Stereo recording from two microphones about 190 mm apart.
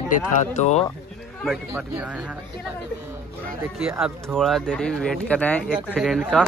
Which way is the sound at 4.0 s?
Centre (ahead or behind).